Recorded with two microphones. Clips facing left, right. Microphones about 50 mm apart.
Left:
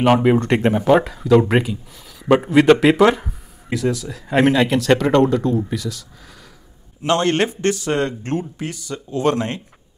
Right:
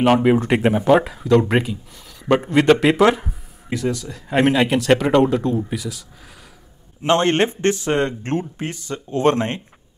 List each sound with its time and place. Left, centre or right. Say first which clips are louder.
0.0 s speech: even; centre
7.0 s speech: right 1 dB; right